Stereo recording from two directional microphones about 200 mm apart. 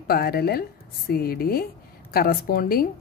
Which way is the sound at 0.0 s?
50° left (ahead or behind).